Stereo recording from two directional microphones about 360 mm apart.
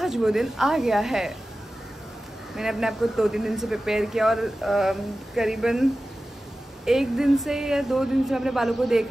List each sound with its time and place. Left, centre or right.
0.0 s speech: centre
2.5 s speech: centre